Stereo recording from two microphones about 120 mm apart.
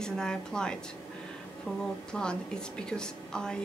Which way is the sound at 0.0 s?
5° left (ahead or behind).